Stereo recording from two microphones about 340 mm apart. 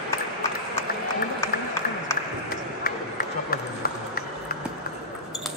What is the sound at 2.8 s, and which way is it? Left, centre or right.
Run, left.